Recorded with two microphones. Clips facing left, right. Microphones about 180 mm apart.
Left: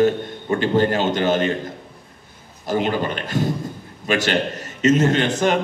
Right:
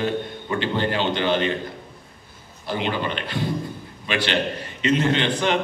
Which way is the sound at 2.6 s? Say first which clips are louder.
Left 4 dB; 45° left (ahead or behind).